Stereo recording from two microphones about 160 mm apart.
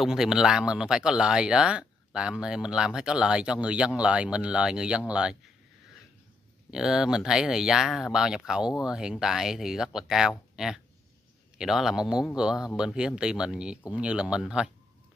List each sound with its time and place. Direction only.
0.0 s speech: 5° right (ahead or behind)
6.7 s speech: 5° right (ahead or behind)
10.5 s a sound: 5° right (ahead or behind)
11.5 s speech: centre (ahead or behind)